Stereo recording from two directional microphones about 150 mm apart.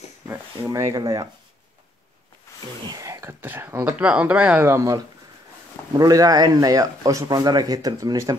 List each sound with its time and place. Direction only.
0.3 s speech: 20° right (ahead or behind)
2.9 s speech: 20° right (ahead or behind)